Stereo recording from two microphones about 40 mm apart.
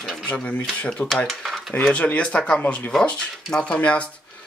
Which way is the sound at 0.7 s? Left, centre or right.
Left.